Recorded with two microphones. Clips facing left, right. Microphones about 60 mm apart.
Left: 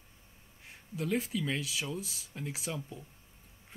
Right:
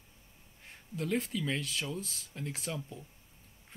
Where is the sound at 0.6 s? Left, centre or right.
Centre.